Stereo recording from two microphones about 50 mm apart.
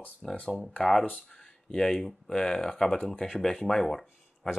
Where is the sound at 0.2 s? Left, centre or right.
Centre.